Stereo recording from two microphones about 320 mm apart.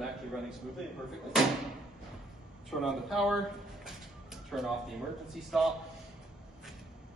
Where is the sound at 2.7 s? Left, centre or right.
Centre.